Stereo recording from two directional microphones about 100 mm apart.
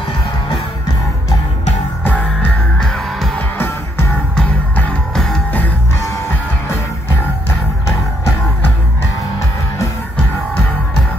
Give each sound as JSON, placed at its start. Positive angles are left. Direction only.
{"t": 2.0, "sound": "music", "side_deg": 15}
{"t": 2.8, "sound": "music", "side_deg": 5}
{"t": 3.3, "sound": "music", "side_deg": 20}